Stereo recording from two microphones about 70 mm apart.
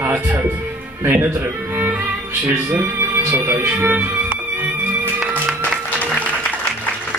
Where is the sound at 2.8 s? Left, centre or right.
Right.